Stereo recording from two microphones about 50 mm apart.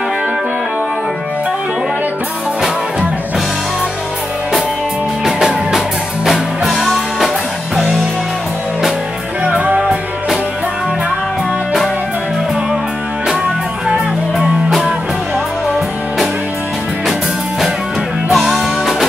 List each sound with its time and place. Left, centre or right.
5.2 s music: centre
9.4 s music: right
9.8 s music: centre
14.7 s music: centre
18.3 s music: centre